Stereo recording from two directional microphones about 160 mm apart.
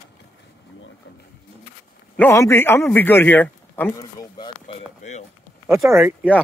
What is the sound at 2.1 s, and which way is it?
A man's voice, 15° left (ahead or behind).